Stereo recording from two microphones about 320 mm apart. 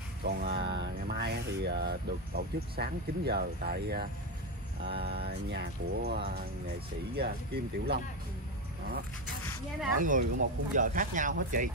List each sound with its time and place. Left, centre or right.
0.2 s a sound: right
7.2 s speech: right
9.9 s speech: right